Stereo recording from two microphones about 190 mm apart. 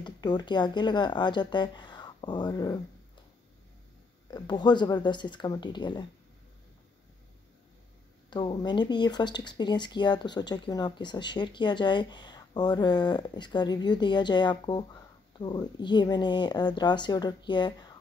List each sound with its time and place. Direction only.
0.0 s speech: 20° left (ahead or behind)
4.3 s speech: 20° left (ahead or behind)
8.3 s speech: 25° left (ahead or behind)